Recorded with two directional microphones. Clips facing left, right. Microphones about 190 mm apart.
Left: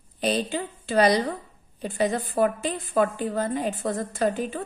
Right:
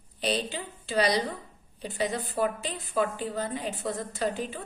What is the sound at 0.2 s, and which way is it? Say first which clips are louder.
A woman's voice: left 5 dB; 50° left (ahead or behind).